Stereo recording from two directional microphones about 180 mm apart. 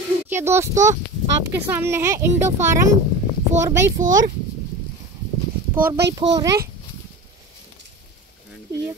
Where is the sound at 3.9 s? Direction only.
45° right (ahead or behind).